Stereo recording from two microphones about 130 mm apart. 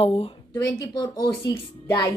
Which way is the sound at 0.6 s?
30° left (ahead or behind).